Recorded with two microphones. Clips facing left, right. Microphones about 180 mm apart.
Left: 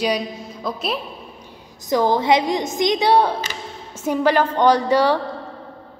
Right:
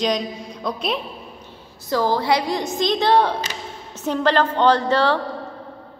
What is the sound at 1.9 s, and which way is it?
A woman's voice, 20° left (ahead or behind).